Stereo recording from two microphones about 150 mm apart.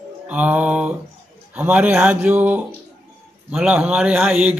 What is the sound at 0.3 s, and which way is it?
A man's voice, 10° right (ahead or behind).